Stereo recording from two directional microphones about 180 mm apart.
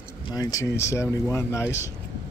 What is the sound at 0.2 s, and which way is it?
Speech, 20° left (ahead or behind).